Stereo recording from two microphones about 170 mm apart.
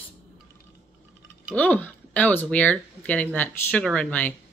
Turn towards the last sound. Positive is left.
turn(degrees=10)  # may be behind; listen again after turning